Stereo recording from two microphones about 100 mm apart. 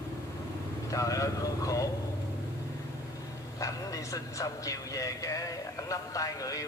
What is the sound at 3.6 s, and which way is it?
A man's voice, 35° left (ahead or behind).